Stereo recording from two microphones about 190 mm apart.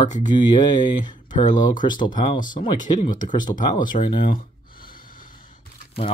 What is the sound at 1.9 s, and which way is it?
Speech, 25° left (ahead or behind).